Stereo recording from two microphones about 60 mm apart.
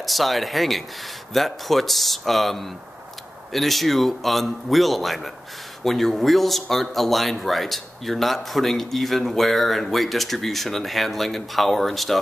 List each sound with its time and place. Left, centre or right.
0.0 s speech: centre